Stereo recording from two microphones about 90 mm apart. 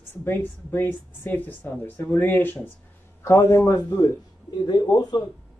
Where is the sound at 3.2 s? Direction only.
30° left (ahead or behind).